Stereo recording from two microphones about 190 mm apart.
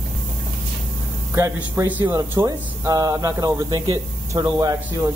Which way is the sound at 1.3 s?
15° right (ahead or behind).